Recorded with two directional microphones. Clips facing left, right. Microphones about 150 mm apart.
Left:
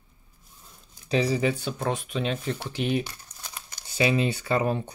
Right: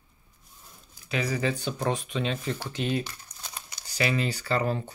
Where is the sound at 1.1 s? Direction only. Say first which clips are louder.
Left 5 dB; 30° left (ahead or behind).